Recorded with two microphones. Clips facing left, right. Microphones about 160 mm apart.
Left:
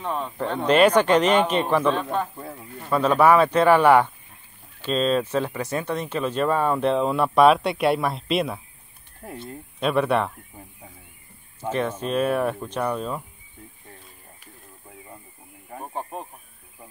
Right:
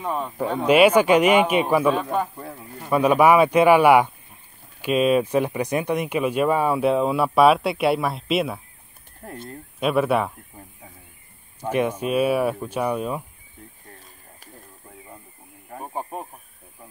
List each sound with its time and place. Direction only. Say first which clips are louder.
0.0 s speech: right 2 dB; 10° right (ahead or behind)
2.3 s speech: even; centre (ahead or behind)
2.9 s speech: right 1 dB; 10° right (ahead or behind)
9.8 s speech: right 1 dB; 5° right (ahead or behind)
11.6 s speech: right 3 dB; 10° right (ahead or behind)
15.7 s speech: right 1 dB; 5° right (ahead or behind)